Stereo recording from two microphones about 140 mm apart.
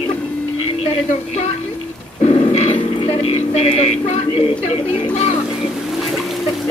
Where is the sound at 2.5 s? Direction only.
50° left (ahead or behind).